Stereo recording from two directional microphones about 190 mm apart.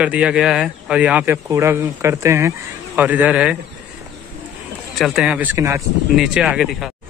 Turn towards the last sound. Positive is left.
turn(degrees=0)  # may be behind; listen again after turning